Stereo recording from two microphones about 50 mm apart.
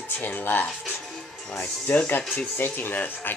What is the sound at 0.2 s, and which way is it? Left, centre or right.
Speech, left.